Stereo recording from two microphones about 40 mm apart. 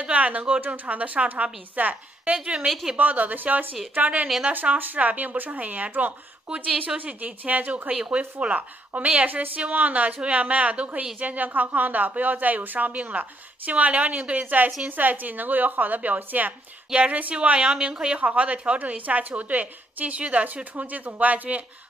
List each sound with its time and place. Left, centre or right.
0.0 s a sound: right
0.7 s a woman's voice: right
2.3 s a woman's voice: right
3.0 s speech: right
7.2 s a woman's voice: right
16.9 s a woman's voice: right